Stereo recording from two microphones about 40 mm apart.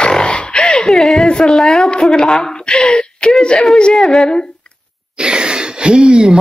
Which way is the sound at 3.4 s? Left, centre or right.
Left.